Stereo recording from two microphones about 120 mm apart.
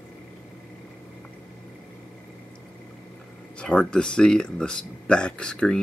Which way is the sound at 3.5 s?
10° left (ahead or behind).